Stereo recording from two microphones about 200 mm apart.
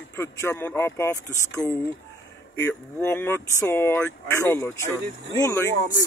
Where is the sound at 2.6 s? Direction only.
10° left (ahead or behind).